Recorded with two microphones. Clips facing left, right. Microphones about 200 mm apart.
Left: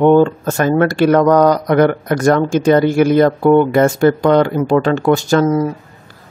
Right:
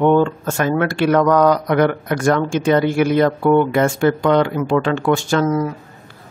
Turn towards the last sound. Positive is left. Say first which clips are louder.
# left 4 dB
turn(degrees=35)  # may be behind; listen again after turning